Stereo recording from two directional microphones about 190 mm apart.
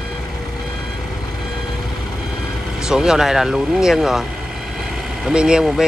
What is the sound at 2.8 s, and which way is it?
Speech, 5° right (ahead or behind).